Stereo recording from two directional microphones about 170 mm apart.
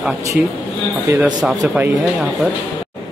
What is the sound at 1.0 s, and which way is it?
Speech, 10° right (ahead or behind).